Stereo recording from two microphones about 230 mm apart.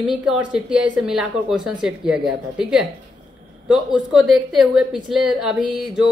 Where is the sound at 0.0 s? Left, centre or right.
Centre.